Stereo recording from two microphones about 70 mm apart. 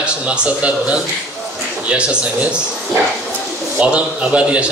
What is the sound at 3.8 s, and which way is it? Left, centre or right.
Speech, centre.